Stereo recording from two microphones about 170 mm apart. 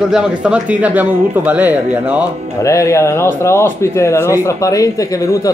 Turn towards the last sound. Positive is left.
turn(degrees=20)  # may be behind; listen again after turning